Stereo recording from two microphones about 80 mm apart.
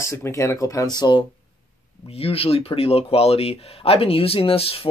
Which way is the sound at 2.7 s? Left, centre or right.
Left.